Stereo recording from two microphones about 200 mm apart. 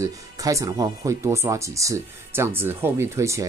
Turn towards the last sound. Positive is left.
turn(degrees=-15)  # may be behind; listen again after turning